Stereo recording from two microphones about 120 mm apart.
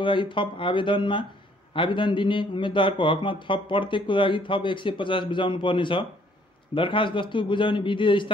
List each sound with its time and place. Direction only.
0.0 s speech: 45° left (ahead or behind)